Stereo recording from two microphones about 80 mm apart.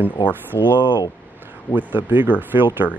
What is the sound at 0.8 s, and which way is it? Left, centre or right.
Speech, left.